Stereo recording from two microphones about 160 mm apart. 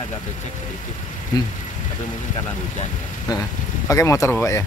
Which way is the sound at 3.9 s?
20° left (ahead or behind).